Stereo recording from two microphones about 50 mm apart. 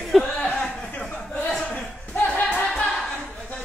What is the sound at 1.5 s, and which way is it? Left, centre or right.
Chuckle, left.